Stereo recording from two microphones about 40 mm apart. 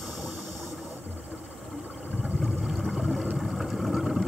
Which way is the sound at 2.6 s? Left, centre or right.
Centre.